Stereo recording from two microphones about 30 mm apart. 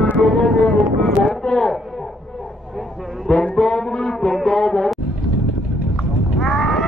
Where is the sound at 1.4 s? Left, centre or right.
Left.